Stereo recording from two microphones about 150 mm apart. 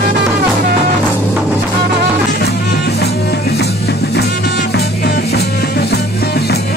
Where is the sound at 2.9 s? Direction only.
90° left.